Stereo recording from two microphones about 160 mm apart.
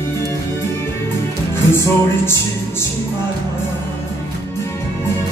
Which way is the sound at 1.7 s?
15° left (ahead or behind).